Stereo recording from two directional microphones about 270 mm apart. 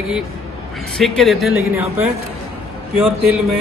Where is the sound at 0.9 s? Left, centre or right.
Centre.